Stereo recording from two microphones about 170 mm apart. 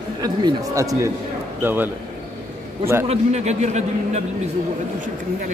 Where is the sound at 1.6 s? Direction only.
10° right (ahead or behind).